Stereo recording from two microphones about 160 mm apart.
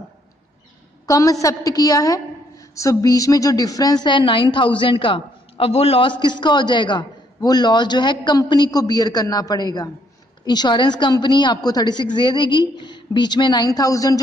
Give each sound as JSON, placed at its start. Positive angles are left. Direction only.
{"t": 1.0, "sound": "a woman's voice", "side_deg": 20}